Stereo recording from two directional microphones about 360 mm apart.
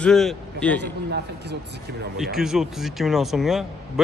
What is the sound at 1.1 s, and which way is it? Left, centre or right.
Speech, right.